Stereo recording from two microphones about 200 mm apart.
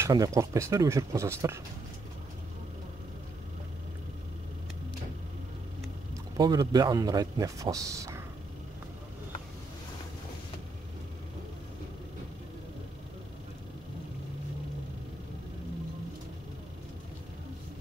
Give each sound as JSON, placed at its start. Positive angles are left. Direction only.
{"t": 0.0, "sound": "speech", "side_deg": -15}
{"t": 6.3, "sound": "speech", "side_deg": -20}